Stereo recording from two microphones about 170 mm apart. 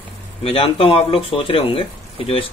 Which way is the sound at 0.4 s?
35° left (ahead or behind).